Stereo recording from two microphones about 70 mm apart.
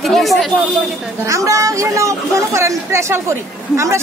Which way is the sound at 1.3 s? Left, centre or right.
Right.